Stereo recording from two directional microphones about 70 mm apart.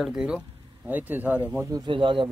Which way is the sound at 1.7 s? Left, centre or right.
Right.